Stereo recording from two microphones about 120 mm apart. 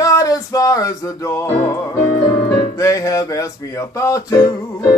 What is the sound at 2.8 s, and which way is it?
Music, 30° left (ahead or behind).